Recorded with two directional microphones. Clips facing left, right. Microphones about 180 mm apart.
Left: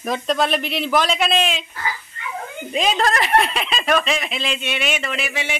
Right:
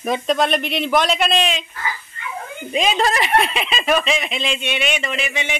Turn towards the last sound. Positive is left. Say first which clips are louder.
# right 1 dB
turn(degrees=5)  # may be behind; listen again after turning